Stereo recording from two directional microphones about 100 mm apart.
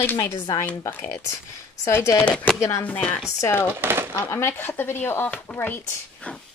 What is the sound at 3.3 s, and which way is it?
Speech, 30° left (ahead or behind).